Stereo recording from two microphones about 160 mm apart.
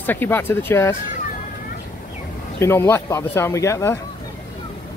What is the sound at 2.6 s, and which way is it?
Speech, 15° left (ahead or behind).